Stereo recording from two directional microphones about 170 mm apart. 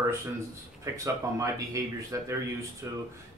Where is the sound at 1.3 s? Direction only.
20° right (ahead or behind).